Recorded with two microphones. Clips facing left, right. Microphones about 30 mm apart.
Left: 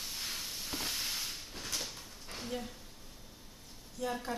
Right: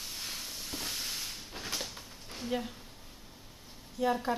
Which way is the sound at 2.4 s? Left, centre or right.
Right.